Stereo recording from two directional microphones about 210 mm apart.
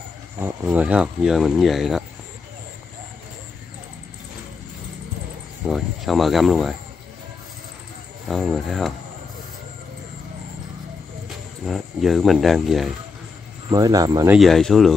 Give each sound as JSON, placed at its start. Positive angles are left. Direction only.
{"t": 0.4, "sound": "speech", "side_deg": -10}
{"t": 5.7, "sound": "speech", "side_deg": 0}
{"t": 8.3, "sound": "speech", "side_deg": 0}
{"t": 11.2, "sound": "speech", "side_deg": 0}
{"t": 13.7, "sound": "speech", "side_deg": -15}
{"t": 14.3, "sound": "speech", "side_deg": 0}